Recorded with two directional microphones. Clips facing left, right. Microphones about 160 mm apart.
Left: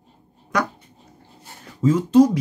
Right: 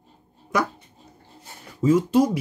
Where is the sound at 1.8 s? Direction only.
10° right (ahead or behind).